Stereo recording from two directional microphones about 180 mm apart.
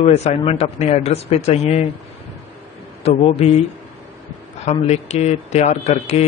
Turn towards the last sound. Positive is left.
turn(degrees=40)  # may be behind; listen again after turning